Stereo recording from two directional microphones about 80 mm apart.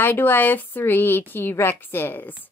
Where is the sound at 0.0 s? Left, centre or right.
Left.